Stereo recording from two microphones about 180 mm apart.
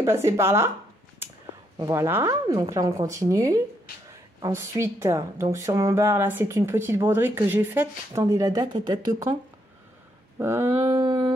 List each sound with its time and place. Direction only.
0.0 s a woman's voice: 15° right (ahead or behind)
1.8 s a woman's voice: 15° right (ahead or behind)
10.4 s a woman's voice: 15° right (ahead or behind)